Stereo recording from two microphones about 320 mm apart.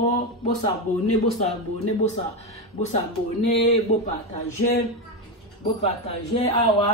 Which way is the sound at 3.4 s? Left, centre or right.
Centre.